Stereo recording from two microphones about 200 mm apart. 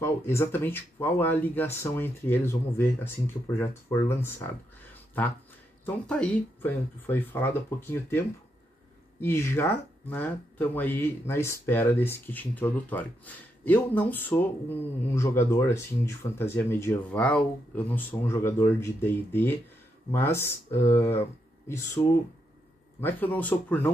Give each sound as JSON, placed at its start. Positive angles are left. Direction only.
{"t": 0.0, "sound": "speech", "side_deg": 15}
{"t": 5.9, "sound": "speech", "side_deg": 5}
{"t": 9.2, "sound": "speech", "side_deg": 10}